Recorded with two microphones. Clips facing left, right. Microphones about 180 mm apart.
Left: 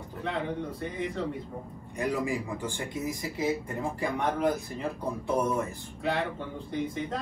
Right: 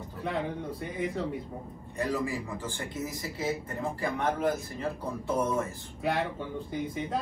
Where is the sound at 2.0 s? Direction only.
15° left (ahead or behind).